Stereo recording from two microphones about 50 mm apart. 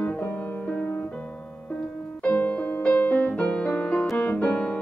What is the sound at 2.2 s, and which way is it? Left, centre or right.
Music, left.